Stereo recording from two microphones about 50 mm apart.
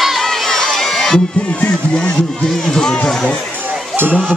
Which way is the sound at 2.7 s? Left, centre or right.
Centre.